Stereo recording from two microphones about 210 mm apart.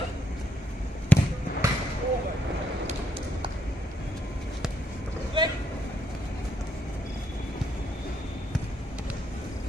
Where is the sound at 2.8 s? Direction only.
25° right (ahead or behind).